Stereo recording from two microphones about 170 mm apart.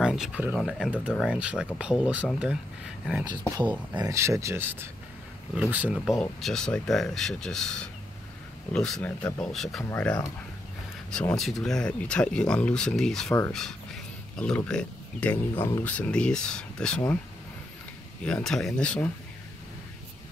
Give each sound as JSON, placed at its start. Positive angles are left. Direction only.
{"t": 0.0, "sound": "speech", "side_deg": -5}
{"t": 3.3, "sound": "speech", "side_deg": -25}
{"t": 6.4, "sound": "speech", "side_deg": 5}
{"t": 18.2, "sound": "speech", "side_deg": 5}